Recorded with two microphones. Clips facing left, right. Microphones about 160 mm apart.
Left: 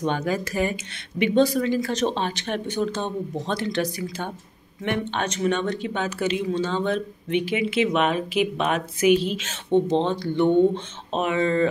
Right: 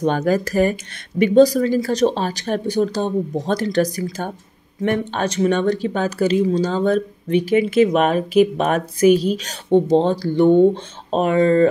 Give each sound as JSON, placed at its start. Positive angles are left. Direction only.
{"t": 0.0, "sound": "speech", "side_deg": -45}